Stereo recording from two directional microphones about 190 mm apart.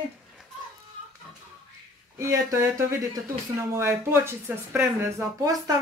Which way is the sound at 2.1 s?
15° right (ahead or behind).